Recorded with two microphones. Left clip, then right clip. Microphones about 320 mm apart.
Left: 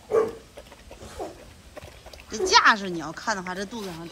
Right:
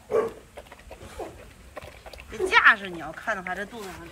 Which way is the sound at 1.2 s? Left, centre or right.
Left.